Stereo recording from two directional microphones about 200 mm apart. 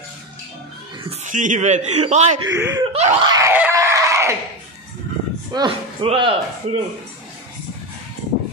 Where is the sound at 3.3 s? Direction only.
10° right (ahead or behind).